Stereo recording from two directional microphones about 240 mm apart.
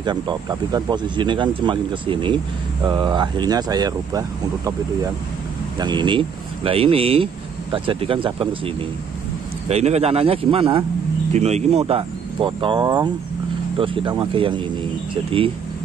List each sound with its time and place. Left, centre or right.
0.0 s speech: centre
9.7 s speech: right